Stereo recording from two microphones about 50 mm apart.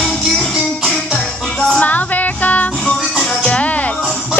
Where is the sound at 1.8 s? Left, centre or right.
Left.